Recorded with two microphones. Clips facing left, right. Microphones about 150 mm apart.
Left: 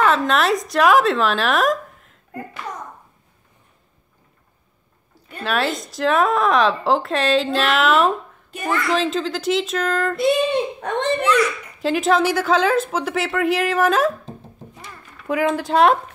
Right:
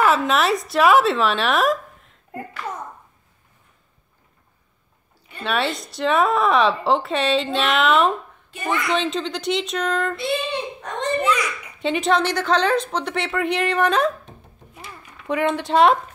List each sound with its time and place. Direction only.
0.0 s speech: 5° right (ahead or behind)
5.4 s a woman's voice: centre (ahead or behind)
10.1 s a child's voice: 45° left (ahead or behind)
11.8 s a woman's voice: centre (ahead or behind)
14.7 s a sound: 5° right (ahead or behind)